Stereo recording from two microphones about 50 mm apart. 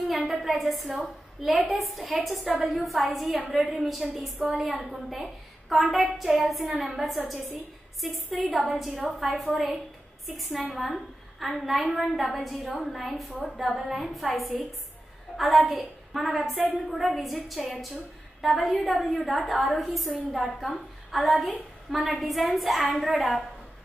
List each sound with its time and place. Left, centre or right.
0.3 s a woman's voice: centre
2.4 s a woman's voice: centre
2.7 s a woman's voice: centre
6.7 s a woman's voice: centre
8.0 s a woman's voice: centre